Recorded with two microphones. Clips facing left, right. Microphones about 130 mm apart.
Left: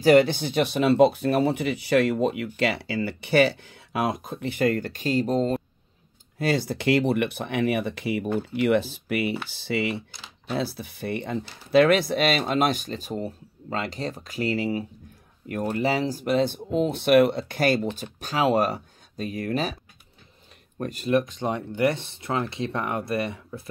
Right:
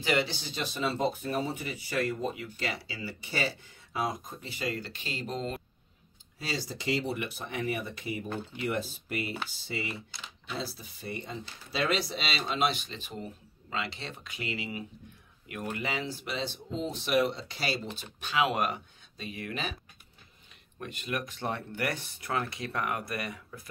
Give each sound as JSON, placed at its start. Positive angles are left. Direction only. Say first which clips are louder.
{"t": 0.0, "sound": "speech", "louder": "left 12 dB", "side_deg": 50}
{"t": 6.3, "sound": "speech", "louder": "left 11 dB", "side_deg": 60}
{"t": 10.5, "sound": "speech", "louder": "left 9 dB", "side_deg": 65}
{"t": 18.2, "sound": "speech", "louder": "left 6 dB", "side_deg": 35}
{"t": 20.8, "sound": "speech", "louder": "left 12 dB", "side_deg": 35}
{"t": 21.2, "sound": "speech", "louder": "left 7 dB", "side_deg": 20}